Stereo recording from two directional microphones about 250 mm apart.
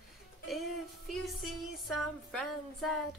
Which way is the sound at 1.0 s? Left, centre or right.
Centre.